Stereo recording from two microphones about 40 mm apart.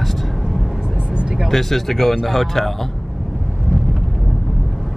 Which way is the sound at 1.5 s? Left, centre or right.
Centre.